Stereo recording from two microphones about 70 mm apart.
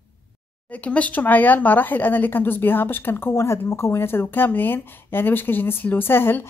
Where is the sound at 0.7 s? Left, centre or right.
Centre.